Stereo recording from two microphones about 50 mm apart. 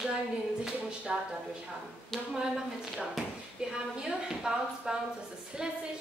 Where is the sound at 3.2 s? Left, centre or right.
Centre.